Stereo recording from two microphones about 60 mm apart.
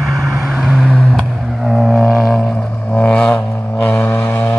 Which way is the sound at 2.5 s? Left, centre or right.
Left.